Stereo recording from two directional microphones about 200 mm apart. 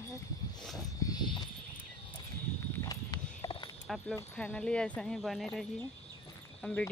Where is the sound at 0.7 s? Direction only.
20° left (ahead or behind).